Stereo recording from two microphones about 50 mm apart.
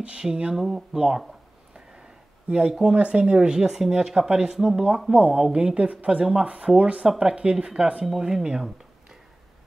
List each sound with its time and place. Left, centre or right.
0.0 s speech: centre
2.5 s speech: centre
5.1 s speech: centre